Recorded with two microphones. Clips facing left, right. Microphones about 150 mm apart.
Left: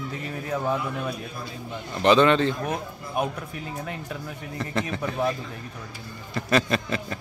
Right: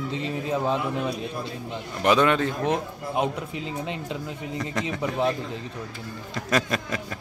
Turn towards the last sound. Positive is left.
turn(degrees=-5)  # may be behind; listen again after turning